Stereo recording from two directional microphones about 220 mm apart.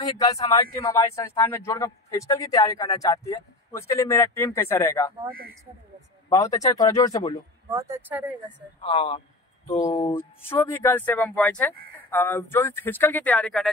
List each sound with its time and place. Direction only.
0.0 s a man's voice: 15° left (ahead or behind)
6.2 s a man's voice: 15° left (ahead or behind)
7.7 s speech: 10° right (ahead or behind)
8.8 s a man's voice: 25° left (ahead or behind); by 13.7 s centre (ahead or behind)